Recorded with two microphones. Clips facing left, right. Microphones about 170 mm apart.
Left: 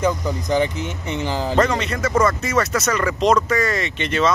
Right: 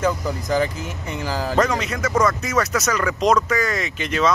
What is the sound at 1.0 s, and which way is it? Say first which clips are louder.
Speech: left 2 dB; 20° left (ahead or behind).